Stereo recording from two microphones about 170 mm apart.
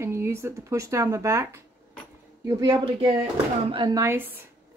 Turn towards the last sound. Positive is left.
turn(degrees=-15)  # may be behind; listen again after turning